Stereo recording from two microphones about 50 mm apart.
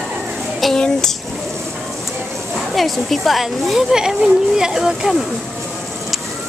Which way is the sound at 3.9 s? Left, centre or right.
Centre.